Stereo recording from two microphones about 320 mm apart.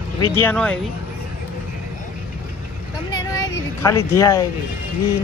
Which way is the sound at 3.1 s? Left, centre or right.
Centre.